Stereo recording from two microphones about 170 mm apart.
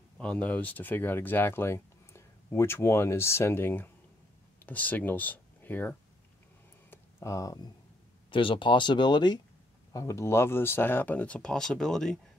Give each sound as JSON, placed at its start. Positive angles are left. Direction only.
{"t": 0.2, "sound": "speech", "side_deg": 5}
{"t": 6.9, "sound": "a sound", "side_deg": 15}
{"t": 8.3, "sound": "speech", "side_deg": 30}